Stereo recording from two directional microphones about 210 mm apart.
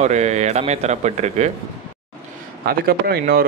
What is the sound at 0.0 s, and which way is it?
Speech, 35° right (ahead or behind).